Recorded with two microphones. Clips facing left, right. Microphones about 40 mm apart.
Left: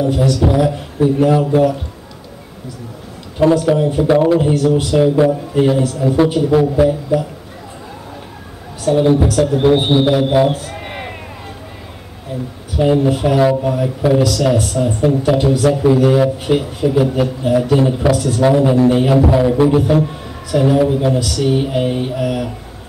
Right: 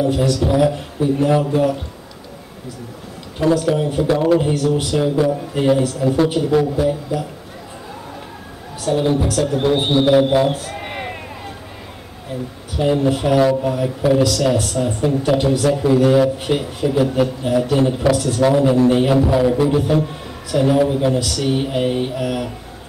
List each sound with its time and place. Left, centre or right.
0.0 s a man's voice: centre
3.3 s a man's voice: centre
7.1 s a man's voice: left
8.8 s a man's voice: centre
12.7 s a man's voice: centre